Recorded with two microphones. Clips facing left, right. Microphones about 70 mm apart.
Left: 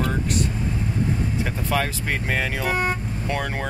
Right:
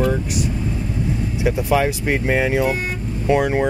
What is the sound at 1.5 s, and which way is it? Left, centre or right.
Speech, centre.